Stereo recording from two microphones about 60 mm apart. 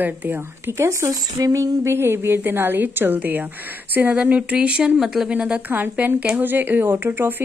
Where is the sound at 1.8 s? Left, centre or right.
Right; by 5.3 s centre.